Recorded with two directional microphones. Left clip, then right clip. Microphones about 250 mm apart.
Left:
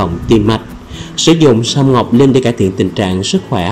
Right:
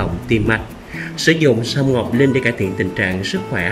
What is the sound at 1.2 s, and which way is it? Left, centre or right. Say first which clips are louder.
Speech: left 6 dB; centre.